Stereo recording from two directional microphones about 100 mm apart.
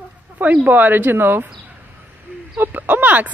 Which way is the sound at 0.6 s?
15° right (ahead or behind).